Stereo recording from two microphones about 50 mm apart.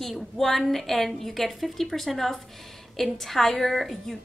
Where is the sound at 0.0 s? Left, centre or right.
Centre.